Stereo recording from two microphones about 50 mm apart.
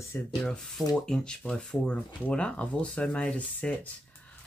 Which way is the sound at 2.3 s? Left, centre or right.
Centre.